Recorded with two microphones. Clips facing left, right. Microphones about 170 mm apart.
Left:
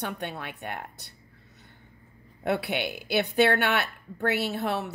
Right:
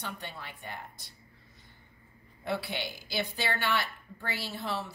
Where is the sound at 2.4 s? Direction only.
65° left (ahead or behind).